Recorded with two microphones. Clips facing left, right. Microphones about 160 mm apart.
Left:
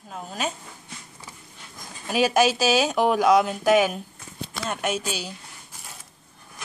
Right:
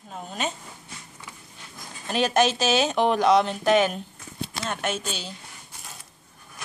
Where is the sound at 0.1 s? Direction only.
Centre (ahead or behind).